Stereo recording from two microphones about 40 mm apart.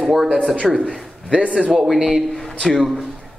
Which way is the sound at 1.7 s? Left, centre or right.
Centre.